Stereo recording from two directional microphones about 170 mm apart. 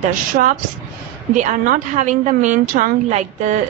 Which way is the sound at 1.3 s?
45° right (ahead or behind).